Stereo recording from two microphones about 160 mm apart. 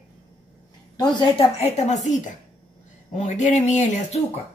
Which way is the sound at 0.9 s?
25° left (ahead or behind).